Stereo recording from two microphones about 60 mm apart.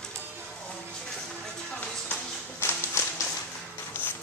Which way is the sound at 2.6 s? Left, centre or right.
Left.